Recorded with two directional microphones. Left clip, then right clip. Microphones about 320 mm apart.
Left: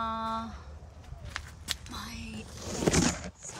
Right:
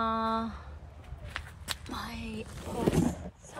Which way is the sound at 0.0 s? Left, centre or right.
Centre.